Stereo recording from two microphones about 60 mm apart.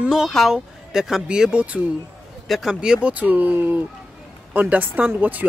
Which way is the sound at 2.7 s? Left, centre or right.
Centre.